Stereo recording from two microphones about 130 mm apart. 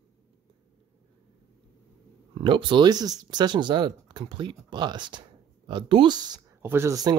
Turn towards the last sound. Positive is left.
turn(degrees=-30)  # may be behind; listen again after turning